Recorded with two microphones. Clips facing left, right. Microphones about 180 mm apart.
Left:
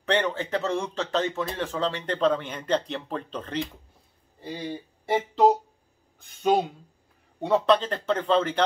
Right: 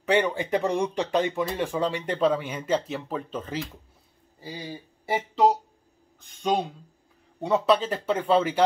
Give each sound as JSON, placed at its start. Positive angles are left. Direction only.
{"t": 0.0, "sound": "speech", "side_deg": -10}
{"t": 5.0, "sound": "speech", "side_deg": 0}